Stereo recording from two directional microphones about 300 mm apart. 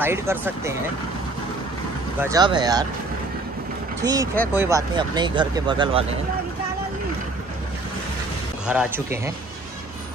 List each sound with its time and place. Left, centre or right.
0.0 s speech: centre
2.2 s speech: centre
4.0 s speech: centre
8.6 s speech: centre